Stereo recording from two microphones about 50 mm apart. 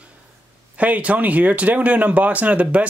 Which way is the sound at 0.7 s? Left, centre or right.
Right.